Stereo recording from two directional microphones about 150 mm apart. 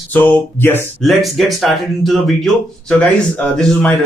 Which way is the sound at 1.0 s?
Centre (ahead or behind).